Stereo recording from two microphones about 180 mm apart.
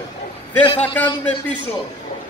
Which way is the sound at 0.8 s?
10° left (ahead or behind).